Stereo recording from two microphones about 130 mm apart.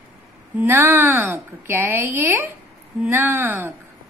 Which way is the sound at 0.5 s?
20° right (ahead or behind).